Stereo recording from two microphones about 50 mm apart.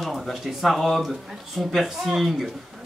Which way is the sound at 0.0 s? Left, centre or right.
Centre.